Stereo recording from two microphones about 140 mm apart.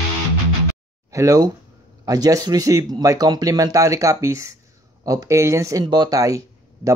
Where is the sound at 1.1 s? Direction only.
25° right (ahead or behind).